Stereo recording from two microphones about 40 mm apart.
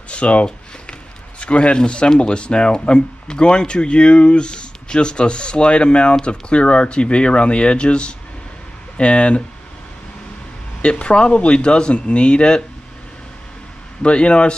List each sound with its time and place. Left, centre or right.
0.1 s speech: left
10.8 s speech: left
14.0 s speech: left